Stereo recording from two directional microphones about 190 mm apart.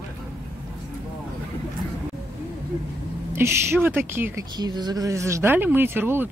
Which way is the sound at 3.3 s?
15° right (ahead or behind).